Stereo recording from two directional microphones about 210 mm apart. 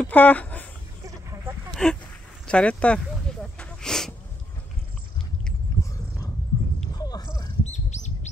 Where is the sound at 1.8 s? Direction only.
Centre (ahead or behind).